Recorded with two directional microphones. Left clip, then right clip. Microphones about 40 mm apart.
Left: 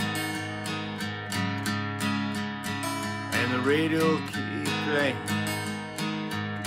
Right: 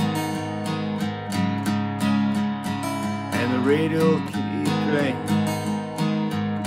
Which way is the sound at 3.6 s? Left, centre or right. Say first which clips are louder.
Right 5 dB; left.